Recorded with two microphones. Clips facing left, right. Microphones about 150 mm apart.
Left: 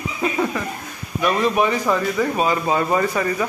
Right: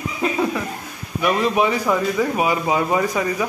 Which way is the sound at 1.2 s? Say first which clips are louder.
Even; 15° right (ahead or behind).